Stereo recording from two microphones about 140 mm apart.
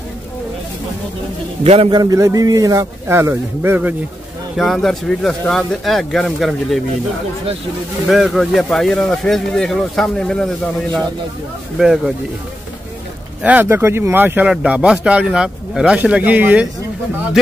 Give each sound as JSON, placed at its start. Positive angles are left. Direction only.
{"t": 1.6, "sound": "a man's voice", "side_deg": -45}
{"t": 1.9, "sound": "a man's voice", "side_deg": -30}
{"t": 4.6, "sound": "speech", "side_deg": 0}
{"t": 8.1, "sound": "speech", "side_deg": 0}
{"t": 13.4, "sound": "speech", "side_deg": -10}